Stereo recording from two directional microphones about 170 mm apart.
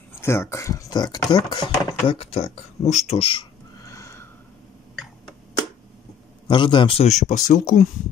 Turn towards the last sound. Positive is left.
turn(degrees=45)  # may be behind; listen again after turning